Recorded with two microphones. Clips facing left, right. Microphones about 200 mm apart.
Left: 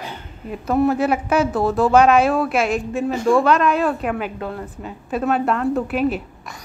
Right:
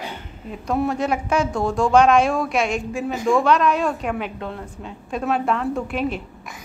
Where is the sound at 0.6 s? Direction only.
Centre (ahead or behind).